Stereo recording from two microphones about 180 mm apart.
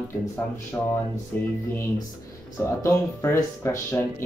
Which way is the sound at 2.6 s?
15° left (ahead or behind).